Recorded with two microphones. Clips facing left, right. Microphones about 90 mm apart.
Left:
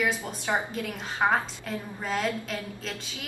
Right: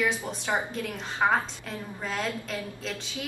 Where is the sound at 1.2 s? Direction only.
5° left (ahead or behind).